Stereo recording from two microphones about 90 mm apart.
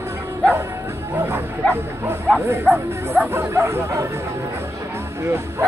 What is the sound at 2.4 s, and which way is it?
Speech, 25° right (ahead or behind).